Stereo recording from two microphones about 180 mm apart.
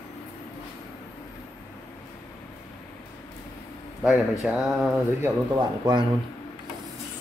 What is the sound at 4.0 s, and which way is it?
Speech, 5° right (ahead or behind).